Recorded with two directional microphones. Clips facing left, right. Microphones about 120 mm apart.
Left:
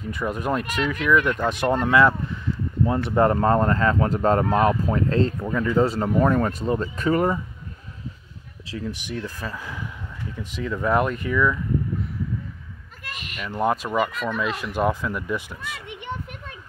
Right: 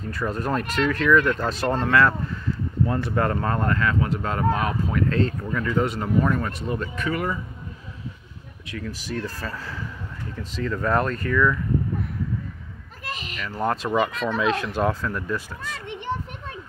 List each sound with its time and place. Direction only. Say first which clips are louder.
0.0 s speech: left 1 dB; 15° left (ahead or behind)
5.9 s speech: left 2 dB; 35° left (ahead or behind)
8.6 s speech: left 1 dB; 25° left (ahead or behind)
13.4 s speech: left 2 dB; 10° left (ahead or behind)